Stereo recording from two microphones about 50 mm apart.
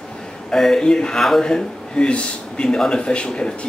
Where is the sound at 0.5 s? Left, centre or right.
Centre.